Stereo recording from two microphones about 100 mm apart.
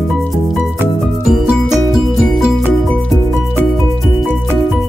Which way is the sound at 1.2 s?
5° right (ahead or behind).